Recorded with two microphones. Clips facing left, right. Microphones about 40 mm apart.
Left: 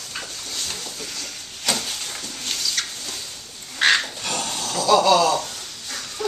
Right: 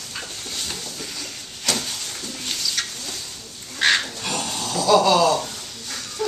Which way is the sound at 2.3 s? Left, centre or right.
Centre.